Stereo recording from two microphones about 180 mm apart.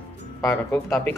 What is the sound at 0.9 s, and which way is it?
Speech, 10° left (ahead or behind).